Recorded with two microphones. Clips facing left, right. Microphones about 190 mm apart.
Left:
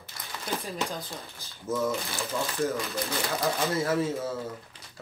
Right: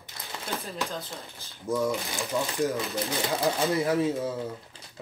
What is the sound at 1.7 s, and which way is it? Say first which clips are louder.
Speech: right 1 dB; 15° right (ahead or behind).